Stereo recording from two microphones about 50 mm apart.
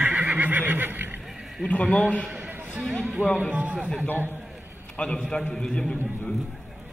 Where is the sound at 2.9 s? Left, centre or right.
Right.